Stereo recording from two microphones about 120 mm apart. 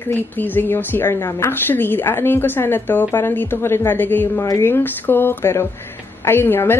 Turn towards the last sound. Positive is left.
turn(degrees=20)  # may be behind; listen again after turning